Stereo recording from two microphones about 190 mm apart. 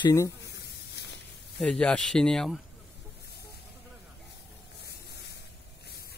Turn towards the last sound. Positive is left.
turn(degrees=60)  # may be behind; listen again after turning